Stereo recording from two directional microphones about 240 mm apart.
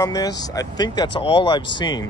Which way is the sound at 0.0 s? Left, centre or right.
Centre.